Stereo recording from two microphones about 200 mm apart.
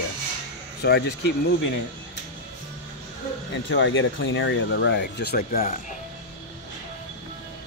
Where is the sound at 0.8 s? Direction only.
55° left (ahead or behind).